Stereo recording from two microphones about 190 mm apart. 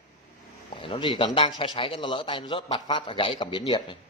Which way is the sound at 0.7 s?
25° left (ahead or behind).